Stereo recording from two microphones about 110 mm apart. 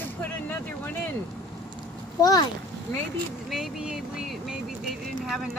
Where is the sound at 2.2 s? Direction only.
35° left (ahead or behind).